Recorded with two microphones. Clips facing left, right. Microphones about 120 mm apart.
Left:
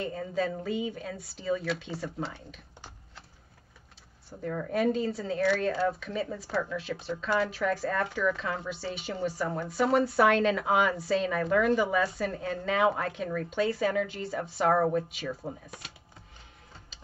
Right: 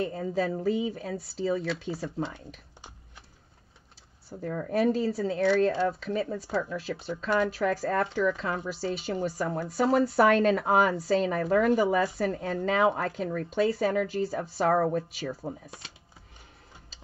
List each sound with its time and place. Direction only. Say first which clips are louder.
0.1 s speech: right 2 dB; 40° right (ahead or behind)
4.4 s speech: right 2 dB; 35° right (ahead or behind)